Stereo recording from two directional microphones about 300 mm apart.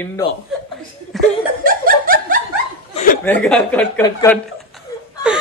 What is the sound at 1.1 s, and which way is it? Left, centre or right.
Laughter, centre.